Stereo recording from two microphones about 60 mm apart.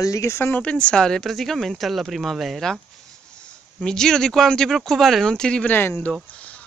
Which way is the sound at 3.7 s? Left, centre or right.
Centre.